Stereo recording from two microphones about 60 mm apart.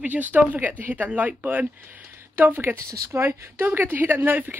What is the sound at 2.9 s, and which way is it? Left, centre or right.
Speech, right.